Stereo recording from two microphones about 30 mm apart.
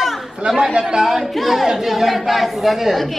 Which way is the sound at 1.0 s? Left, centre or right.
Centre.